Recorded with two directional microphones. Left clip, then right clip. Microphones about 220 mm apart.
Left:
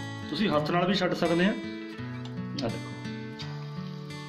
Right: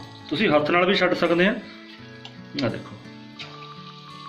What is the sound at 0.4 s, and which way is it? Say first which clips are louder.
Speech: right 7 dB; 40° left (ahead or behind).